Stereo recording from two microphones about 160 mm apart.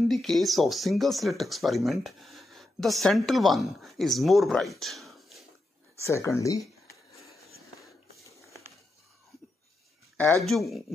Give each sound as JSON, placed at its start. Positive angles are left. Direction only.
{"t": 0.1, "sound": "speech", "side_deg": 0}
{"t": 6.0, "sound": "speech", "side_deg": 20}
{"t": 10.4, "sound": "speech", "side_deg": 0}